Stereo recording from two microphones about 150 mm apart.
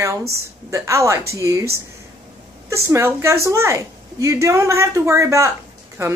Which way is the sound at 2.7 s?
20° right (ahead or behind).